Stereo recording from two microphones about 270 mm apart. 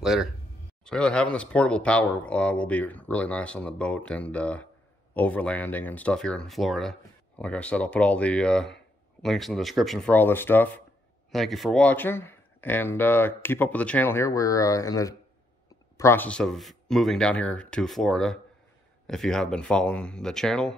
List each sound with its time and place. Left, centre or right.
0.0 s speech: centre